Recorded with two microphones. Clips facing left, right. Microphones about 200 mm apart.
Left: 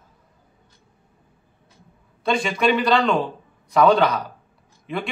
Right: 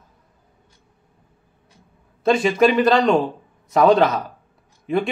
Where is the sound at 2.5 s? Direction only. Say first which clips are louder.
Right 3 dB; 45° right (ahead or behind).